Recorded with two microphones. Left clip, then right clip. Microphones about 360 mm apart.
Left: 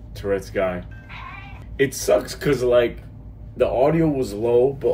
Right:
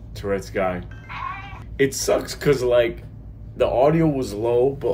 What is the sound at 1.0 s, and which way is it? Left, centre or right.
Music, right.